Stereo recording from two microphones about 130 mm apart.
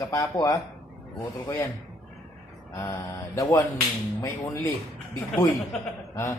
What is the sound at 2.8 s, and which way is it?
Speech, 25° left (ahead or behind).